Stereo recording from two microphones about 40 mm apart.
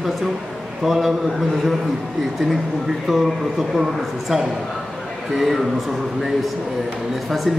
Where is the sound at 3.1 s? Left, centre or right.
Centre.